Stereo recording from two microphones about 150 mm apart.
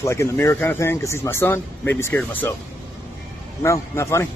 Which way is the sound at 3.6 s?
20° left (ahead or behind).